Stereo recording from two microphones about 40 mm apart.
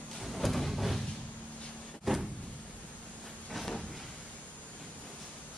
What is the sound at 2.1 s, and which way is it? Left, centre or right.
Vehicle, centre.